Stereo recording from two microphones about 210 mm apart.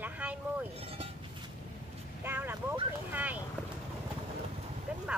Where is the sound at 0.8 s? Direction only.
30° right (ahead or behind).